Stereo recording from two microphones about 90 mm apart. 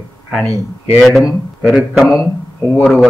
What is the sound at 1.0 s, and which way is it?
A man's voice, centre (ahead or behind).